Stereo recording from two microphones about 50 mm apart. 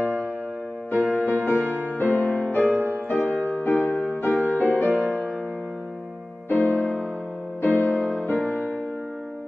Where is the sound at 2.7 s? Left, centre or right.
Right.